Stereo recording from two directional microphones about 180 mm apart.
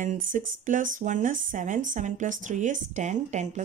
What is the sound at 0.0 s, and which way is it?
Speech, 50° right (ahead or behind).